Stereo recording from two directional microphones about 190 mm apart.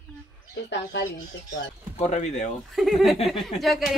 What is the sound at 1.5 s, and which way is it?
Speech, 35° left (ahead or behind).